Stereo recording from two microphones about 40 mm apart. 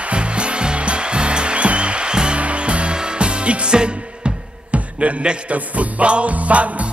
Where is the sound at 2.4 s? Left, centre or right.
Right.